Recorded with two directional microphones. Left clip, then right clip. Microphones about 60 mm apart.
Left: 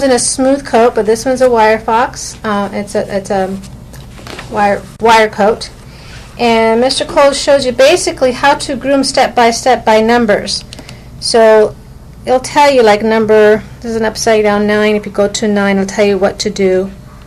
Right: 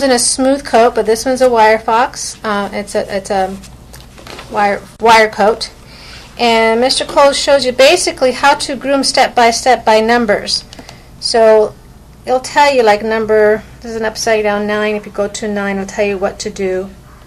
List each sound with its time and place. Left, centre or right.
0.0 s a woman's voice: centre